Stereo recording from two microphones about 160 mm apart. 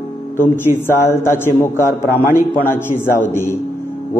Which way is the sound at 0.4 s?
15° left (ahead or behind).